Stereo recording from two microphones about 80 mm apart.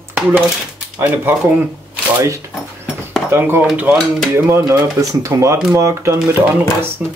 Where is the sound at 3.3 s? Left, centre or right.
Right.